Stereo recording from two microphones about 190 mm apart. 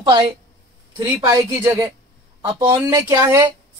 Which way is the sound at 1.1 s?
15° right (ahead or behind).